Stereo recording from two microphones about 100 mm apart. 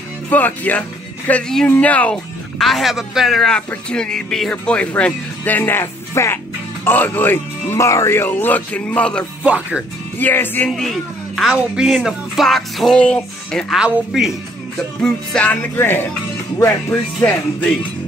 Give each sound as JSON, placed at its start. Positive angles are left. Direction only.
{"t": 0.3, "sound": "speech", "side_deg": 15}
{"t": 2.6, "sound": "speech", "side_deg": 0}
{"t": 7.8, "sound": "speech", "side_deg": 30}
{"t": 9.4, "sound": "speech", "side_deg": -10}
{"t": 10.1, "sound": "music", "side_deg": 20}
{"t": 10.8, "sound": "speech", "side_deg": 0}
{"t": 13.7, "sound": "speech", "side_deg": -5}
{"t": 15.0, "sound": "music", "side_deg": 10}